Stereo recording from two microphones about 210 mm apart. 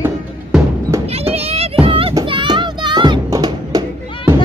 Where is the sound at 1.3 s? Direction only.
30° right (ahead or behind).